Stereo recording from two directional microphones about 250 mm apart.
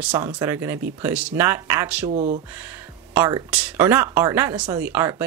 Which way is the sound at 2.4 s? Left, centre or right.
Centre.